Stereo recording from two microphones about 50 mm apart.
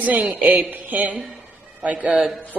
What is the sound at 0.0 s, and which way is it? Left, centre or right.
A woman's voice, right.